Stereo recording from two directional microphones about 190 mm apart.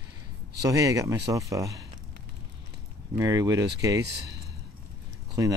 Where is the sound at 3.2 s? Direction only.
20° right (ahead or behind).